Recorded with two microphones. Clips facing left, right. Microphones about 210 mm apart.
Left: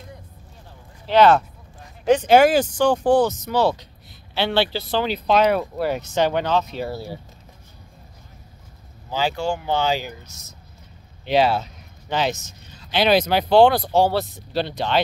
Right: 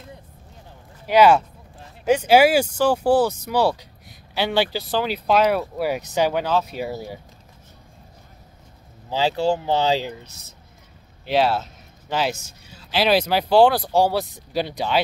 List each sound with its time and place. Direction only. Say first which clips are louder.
1.0 s speech: even; 10° right (ahead or behind)
9.1 s speech: right 3 dB; 30° right (ahead or behind)
11.2 s speech: left 1 dB; centre (ahead or behind)